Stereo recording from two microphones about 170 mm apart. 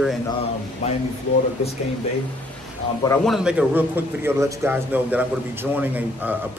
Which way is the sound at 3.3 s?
5° right (ahead or behind).